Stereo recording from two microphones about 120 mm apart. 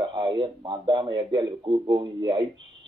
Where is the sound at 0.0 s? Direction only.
40° right (ahead or behind).